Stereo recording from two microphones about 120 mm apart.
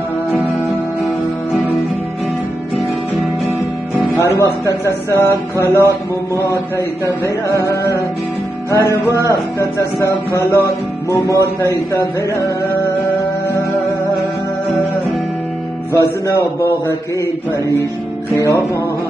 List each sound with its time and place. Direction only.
4.2 s a man's voice: 25° left (ahead or behind)
15.9 s a man's voice: 25° left (ahead or behind)
18.3 s a man's voice: 25° left (ahead or behind)